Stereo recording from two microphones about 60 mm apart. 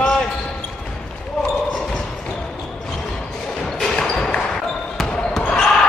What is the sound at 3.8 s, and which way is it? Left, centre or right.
Basketball bounce, centre.